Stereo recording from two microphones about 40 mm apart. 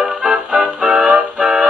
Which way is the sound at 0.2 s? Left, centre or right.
Centre.